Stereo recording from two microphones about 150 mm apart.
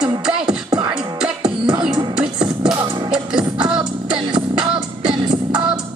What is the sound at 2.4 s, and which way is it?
Music, 25° right (ahead or behind).